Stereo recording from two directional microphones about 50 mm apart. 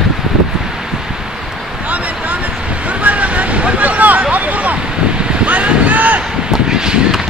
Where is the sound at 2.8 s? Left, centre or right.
Right.